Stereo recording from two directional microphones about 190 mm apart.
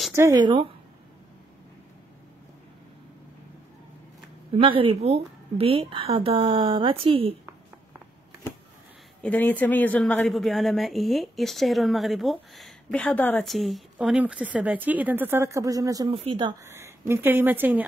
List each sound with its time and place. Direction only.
0.1 s a woman's voice: 15° right (ahead or behind)
4.5 s a woman's voice: 30° right (ahead or behind)
9.2 s speech: 10° left (ahead or behind); by 16.1 s 20° right (ahead or behind)
16.1 s a woman's voice: 30° right (ahead or behind)
16.6 s speech: 15° right (ahead or behind)